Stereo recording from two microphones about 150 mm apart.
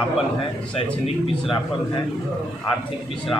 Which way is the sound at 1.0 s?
40° left (ahead or behind).